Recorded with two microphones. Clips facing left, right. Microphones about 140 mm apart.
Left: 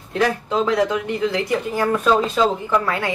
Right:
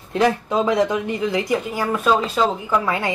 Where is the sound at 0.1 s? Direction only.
15° right (ahead or behind).